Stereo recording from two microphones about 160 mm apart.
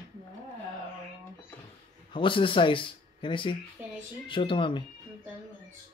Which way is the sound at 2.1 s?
30° left (ahead or behind).